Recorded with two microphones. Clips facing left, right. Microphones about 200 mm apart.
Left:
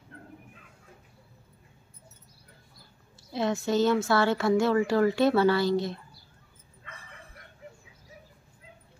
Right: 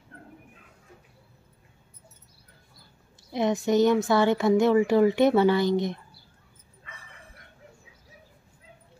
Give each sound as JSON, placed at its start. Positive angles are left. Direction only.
{"t": 3.3, "sound": "speech", "side_deg": -20}